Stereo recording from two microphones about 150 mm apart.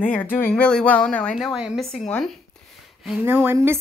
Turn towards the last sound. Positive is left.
turn(degrees=-15)  # may be behind; listen again after turning